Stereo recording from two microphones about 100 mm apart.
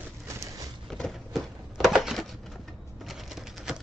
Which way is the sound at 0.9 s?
5° left (ahead or behind).